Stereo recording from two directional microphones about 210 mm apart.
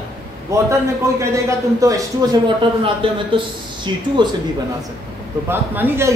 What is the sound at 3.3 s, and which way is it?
Speech, 20° right (ahead or behind).